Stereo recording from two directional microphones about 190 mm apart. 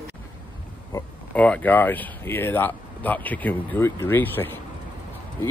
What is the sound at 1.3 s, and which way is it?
Speech, 10° left (ahead or behind).